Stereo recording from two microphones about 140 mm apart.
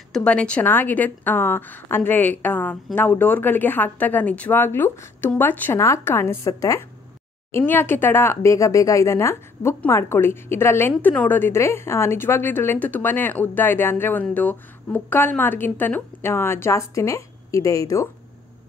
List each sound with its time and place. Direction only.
0.1 s a woman's voice: 5° left (ahead or behind); by 18.0 s 25° left (ahead or behind)